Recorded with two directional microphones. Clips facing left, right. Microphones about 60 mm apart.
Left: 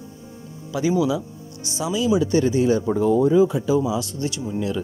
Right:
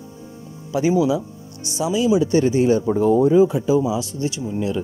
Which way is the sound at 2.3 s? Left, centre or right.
Right.